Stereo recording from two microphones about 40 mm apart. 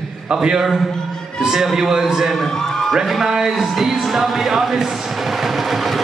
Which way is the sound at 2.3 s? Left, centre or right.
Centre.